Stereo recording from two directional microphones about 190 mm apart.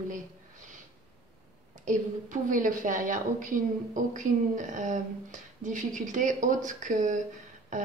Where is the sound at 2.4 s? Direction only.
45° right (ahead or behind).